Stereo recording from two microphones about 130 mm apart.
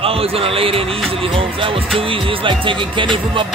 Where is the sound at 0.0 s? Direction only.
45° right (ahead or behind).